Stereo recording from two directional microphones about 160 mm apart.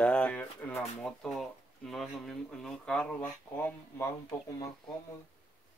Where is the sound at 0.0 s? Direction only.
5° left (ahead or behind).